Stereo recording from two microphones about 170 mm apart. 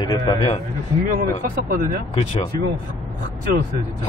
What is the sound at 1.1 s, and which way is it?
Speech, 55° right (ahead or behind).